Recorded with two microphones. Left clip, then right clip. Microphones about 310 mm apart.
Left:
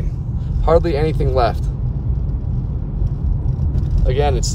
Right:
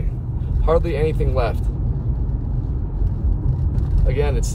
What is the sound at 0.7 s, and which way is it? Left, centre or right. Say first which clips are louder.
Speech: left 4 dB; centre.